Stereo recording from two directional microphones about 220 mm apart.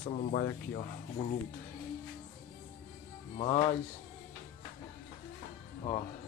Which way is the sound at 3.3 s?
30° left (ahead or behind).